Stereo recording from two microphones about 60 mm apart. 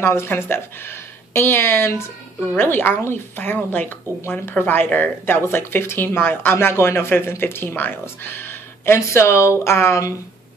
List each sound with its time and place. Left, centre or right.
0.0 s speech: left